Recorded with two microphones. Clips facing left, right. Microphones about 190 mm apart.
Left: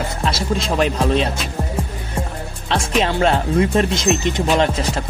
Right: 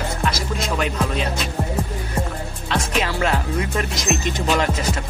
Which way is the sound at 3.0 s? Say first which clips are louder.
Left 5 dB; 30° left (ahead or behind).